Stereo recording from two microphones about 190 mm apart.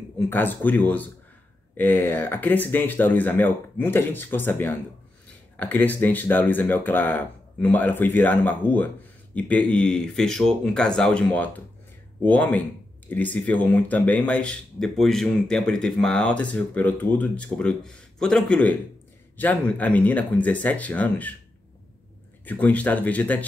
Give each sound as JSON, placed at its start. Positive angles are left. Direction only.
{"t": 0.2, "sound": "speech", "side_deg": 10}
{"t": 22.4, "sound": "speech", "side_deg": 10}